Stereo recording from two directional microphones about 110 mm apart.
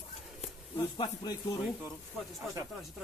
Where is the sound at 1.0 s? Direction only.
40° left (ahead or behind).